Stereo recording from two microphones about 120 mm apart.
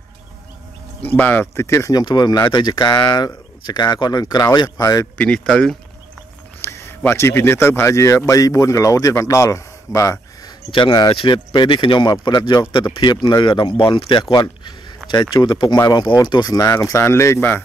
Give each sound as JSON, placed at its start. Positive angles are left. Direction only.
{"t": 1.0, "sound": "speech", "side_deg": 15}
{"t": 5.1, "sound": "speech", "side_deg": 10}
{"t": 6.6, "sound": "a man's voice", "side_deg": 20}
{"t": 10.7, "sound": "a man's voice", "side_deg": 40}